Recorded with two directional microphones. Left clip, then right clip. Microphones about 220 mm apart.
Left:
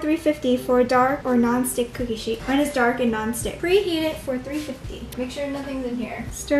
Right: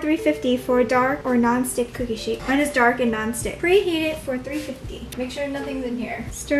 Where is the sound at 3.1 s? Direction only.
5° left (ahead or behind).